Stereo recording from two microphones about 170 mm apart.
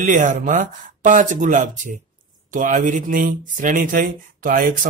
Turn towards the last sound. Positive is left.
turn(degrees=-55)  # may be behind; listen again after turning